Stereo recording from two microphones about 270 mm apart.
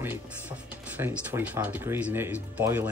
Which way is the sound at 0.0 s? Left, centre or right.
Centre.